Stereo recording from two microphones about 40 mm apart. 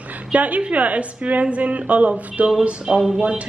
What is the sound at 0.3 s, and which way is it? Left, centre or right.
A woman's voice, right.